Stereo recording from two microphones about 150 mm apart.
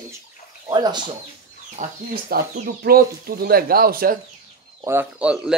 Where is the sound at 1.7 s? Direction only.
75° right (ahead or behind).